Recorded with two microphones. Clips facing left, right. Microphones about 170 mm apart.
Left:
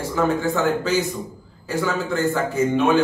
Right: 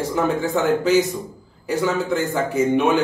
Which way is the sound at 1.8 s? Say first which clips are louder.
Even; 15° right (ahead or behind).